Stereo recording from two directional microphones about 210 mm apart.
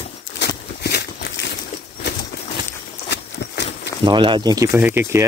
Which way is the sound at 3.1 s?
55° left (ahead or behind).